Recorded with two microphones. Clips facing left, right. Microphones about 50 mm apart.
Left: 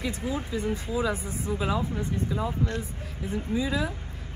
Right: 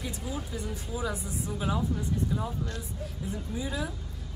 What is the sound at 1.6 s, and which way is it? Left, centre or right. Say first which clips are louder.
Speech: left 3 dB; left.